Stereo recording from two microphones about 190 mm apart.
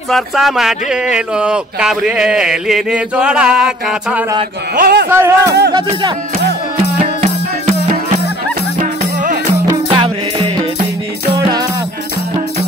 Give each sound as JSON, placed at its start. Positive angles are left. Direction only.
{"t": 0.1, "sound": "speech", "side_deg": 0}
{"t": 4.7, "sound": "speech", "side_deg": -55}
{"t": 5.1, "sound": "speech", "side_deg": -15}
{"t": 5.7, "sound": "music", "side_deg": -20}
{"t": 7.0, "sound": "music", "side_deg": -35}
{"t": 9.7, "sound": "music", "side_deg": -25}